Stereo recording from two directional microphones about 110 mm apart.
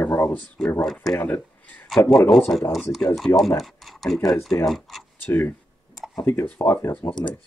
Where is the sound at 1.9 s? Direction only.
5° left (ahead or behind).